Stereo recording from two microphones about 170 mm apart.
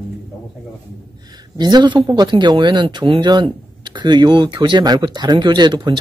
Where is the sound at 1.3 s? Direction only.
25° right (ahead or behind).